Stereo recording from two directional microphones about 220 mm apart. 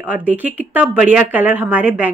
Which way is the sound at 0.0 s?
5° right (ahead or behind).